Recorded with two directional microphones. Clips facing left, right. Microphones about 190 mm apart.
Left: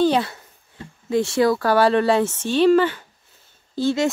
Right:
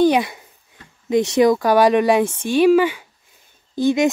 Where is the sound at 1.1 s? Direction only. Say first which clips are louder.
Right 3 dB; 20° right (ahead or behind).